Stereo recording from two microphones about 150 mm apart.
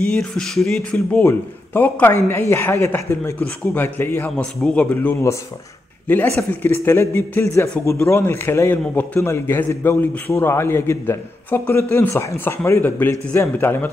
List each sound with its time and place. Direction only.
0.0 s speech: 5° left (ahead or behind)
1.2 s a man's voice: 15° left (ahead or behind)